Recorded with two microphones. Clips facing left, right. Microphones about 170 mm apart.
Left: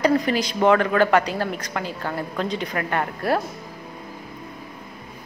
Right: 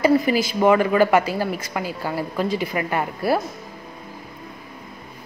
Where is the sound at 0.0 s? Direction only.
5° right (ahead or behind).